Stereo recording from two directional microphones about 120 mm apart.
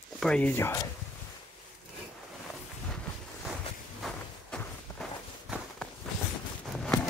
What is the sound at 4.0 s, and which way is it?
Walk, 10° left (ahead or behind).